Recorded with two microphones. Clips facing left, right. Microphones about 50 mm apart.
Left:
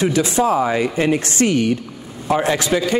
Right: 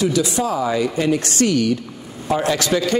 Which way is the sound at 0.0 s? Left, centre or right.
Left.